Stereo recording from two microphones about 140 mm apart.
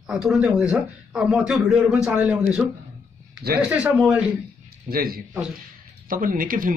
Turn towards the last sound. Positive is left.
turn(degrees=-85)